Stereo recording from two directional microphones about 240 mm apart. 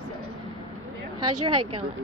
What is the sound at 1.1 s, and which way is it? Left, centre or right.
Speech, right.